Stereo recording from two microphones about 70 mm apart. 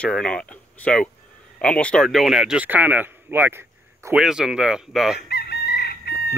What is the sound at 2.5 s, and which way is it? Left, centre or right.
Speech, right.